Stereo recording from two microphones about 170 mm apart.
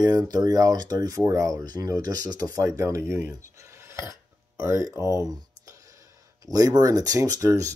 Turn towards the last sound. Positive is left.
turn(degrees=-20)  # may be behind; listen again after turning